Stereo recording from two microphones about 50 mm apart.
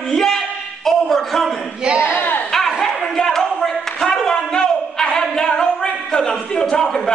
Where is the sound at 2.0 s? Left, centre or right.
Left.